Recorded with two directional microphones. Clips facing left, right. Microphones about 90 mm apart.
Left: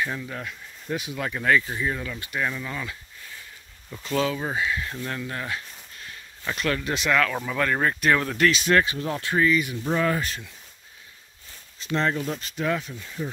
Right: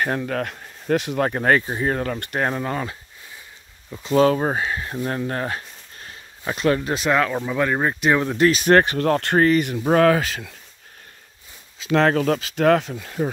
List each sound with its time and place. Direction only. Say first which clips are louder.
0.0 s speech: right 7 dB; 60° right (ahead or behind)
1.2 s speech: right 1 dB; 45° right (ahead or behind)
4.2 s speech: right 8 dB; 45° right (ahead or behind)
4.9 s a sound: right 7 dB; 30° right (ahead or behind)
6.4 s speech: right 6 dB; 25° right (ahead or behind)
8.5 s speech: right 5 dB; 45° right (ahead or behind); by 10.5 s 90° right
11.9 s speech: right 8 dB; 85° right